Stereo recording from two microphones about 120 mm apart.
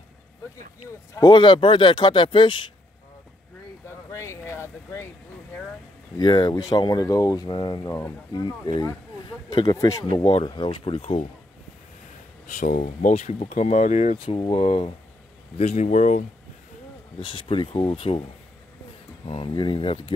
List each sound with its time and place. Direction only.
1.2 s speech: 40° left (ahead or behind)
3.8 s a sound: 20° left (ahead or behind)
6.1 s speech: 35° left (ahead or behind)
7.8 s speech: 25° left (ahead or behind)
10.2 s speech: 60° left (ahead or behind)
10.5 s speech: 40° left (ahead or behind)
12.4 s speech: 90° left
13.1 s speech: 60° left (ahead or behind)
14.1 s speech: 45° left (ahead or behind)
15.5 s speech: 70° left (ahead or behind); by 16.3 s 90° left
17.2 s speech: 45° left (ahead or behind)
19.2 s speech: 45° left (ahead or behind)